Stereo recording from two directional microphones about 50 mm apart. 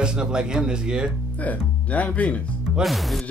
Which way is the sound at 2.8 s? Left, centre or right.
Centre.